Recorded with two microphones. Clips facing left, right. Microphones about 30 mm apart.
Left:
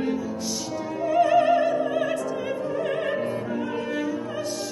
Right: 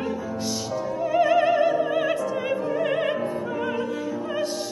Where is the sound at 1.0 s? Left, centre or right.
Centre.